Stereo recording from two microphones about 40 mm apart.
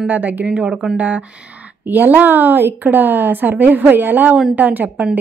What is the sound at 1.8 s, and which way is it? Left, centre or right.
A woman's voice, right.